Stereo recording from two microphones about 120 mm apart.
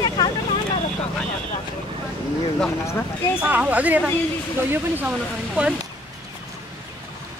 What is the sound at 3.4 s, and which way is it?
Speech, 15° right (ahead or behind).